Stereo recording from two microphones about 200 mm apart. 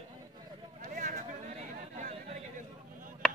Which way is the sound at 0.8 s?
40° right (ahead or behind).